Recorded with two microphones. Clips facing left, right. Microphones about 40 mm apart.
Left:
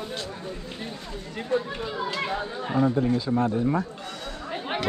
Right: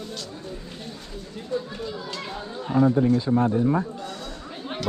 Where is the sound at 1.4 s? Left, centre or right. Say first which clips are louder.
Left 3 dB; left.